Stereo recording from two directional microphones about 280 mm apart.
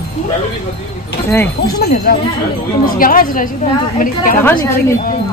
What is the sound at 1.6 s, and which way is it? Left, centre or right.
Wind chime, left.